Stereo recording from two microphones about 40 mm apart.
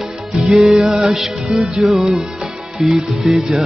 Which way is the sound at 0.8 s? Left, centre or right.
Centre.